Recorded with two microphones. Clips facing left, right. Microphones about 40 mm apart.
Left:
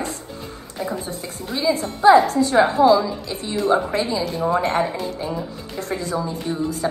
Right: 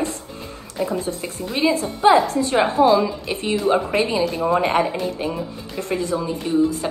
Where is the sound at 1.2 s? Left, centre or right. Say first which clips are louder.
Right 2 dB; right.